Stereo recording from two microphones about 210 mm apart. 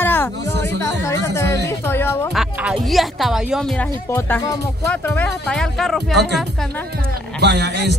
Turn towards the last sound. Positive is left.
turn(degrees=-55)  # may be behind; listen again after turning